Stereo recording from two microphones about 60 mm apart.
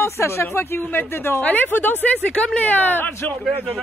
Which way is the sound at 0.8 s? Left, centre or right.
Left.